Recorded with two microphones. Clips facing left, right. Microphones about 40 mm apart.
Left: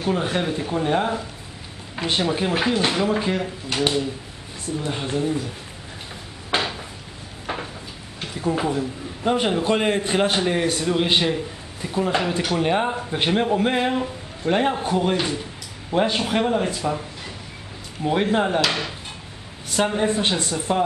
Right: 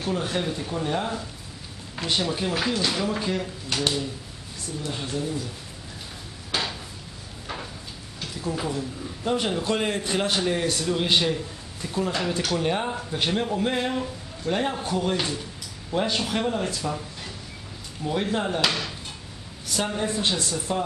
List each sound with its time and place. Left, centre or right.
0.0 s a man's voice: left
6.5 s drawer open or close: centre
8.2 s a man's voice: left